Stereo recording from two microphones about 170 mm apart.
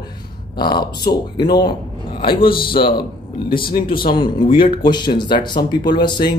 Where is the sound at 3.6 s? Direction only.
60° left (ahead or behind).